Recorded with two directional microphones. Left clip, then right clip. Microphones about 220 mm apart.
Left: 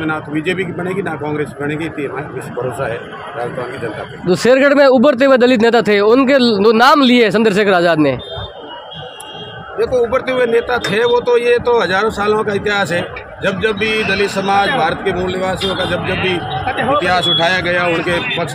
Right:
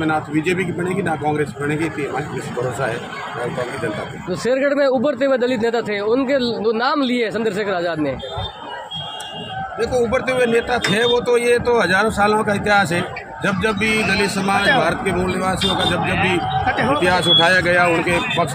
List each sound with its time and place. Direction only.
0.0 s a man's voice: 5° left (ahead or behind)
4.3 s speech: 50° left (ahead or behind)
9.8 s a man's voice: centre (ahead or behind)
16.0 s speech: 20° right (ahead or behind)
16.6 s a sound: 25° right (ahead or behind)
17.0 s a man's voice: 5° left (ahead or behind)